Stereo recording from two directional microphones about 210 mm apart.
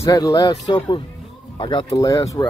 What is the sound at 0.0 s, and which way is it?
Speech, 15° left (ahead or behind).